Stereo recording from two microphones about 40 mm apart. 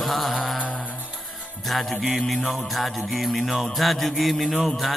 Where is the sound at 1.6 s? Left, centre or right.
Centre.